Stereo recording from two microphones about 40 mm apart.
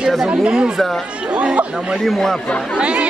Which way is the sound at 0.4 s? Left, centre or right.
Right.